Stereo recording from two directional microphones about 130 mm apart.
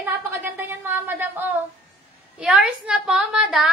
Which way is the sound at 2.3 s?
10° right (ahead or behind).